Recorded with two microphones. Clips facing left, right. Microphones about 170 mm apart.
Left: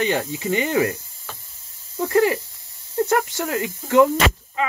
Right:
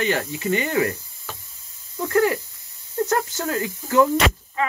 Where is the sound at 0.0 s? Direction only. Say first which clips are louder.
Left 1 dB; 20° left (ahead or behind).